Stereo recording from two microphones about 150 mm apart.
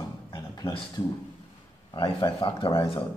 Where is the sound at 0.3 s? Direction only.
30° left (ahead or behind).